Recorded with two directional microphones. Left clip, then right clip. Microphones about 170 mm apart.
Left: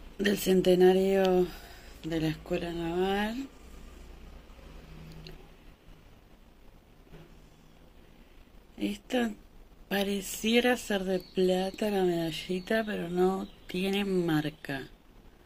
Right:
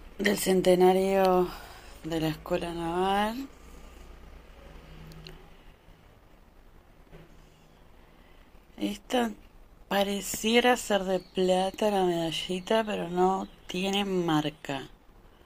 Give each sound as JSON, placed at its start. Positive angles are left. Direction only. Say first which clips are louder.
{"t": 0.2, "sound": "speech", "louder": "right 1 dB", "side_deg": 20}
{"t": 8.7, "sound": "speech", "louder": "right 3 dB", "side_deg": 15}